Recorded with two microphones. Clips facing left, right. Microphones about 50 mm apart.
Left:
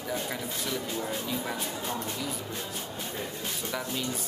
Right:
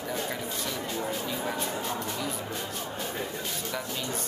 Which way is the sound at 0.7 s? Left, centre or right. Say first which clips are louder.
Even; centre.